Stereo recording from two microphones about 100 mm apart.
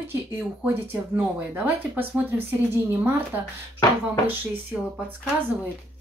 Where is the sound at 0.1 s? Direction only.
20° right (ahead or behind).